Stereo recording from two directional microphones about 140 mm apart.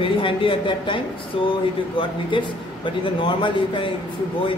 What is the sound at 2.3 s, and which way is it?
Speech, 35° left (ahead or behind).